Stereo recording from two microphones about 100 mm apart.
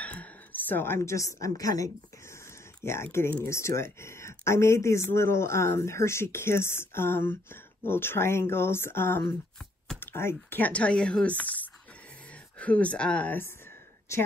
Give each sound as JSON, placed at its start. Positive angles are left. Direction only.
{"t": 0.0, "sound": "a woman's voice", "side_deg": 15}